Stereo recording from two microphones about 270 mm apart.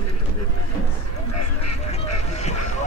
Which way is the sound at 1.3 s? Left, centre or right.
Left.